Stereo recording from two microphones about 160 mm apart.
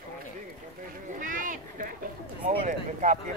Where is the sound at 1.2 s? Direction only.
55° right (ahead or behind).